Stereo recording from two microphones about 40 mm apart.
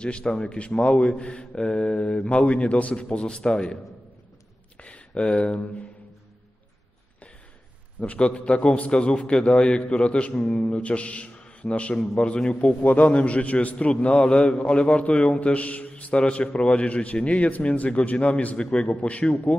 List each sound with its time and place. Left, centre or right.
0.0 s a man's voice: left
4.7 s a sound: left
8.0 s a man's voice: left
10.3 s speech: centre
10.6 s a man's voice: left
12.8 s a man's voice: left
14.0 s a man's voice: left
18.6 s a man's voice: left
18.9 s a man's voice: left